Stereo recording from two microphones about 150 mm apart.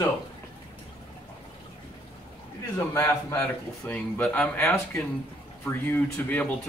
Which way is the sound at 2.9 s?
20° left (ahead or behind).